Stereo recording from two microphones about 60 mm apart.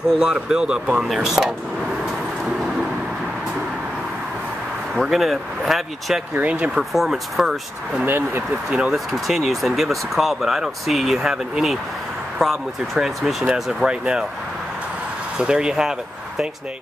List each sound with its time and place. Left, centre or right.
0.1 s speech: centre
1.0 s speech: centre
4.9 s speech: centre
6.4 s speech: right
6.7 s speech: centre
8.0 s speech: right
8.6 s speech: centre
9.1 s speech: centre
15.3 s speech: centre